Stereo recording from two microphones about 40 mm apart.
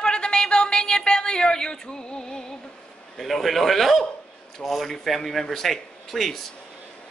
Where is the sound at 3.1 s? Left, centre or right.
Centre.